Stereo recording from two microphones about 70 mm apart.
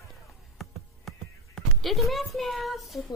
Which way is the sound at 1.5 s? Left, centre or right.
Centre.